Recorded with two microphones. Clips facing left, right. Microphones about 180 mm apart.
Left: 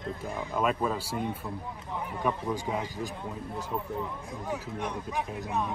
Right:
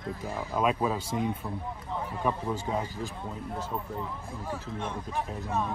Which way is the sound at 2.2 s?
5° right (ahead or behind).